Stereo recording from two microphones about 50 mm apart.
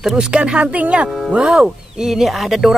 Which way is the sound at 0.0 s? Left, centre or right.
Centre.